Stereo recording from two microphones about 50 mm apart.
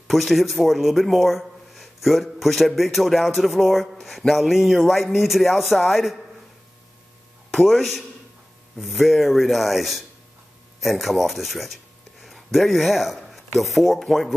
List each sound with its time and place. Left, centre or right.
0.1 s a man's voice: centre
7.5 s a man's voice: centre